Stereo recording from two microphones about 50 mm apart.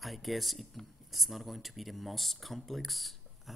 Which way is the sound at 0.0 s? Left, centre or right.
Centre.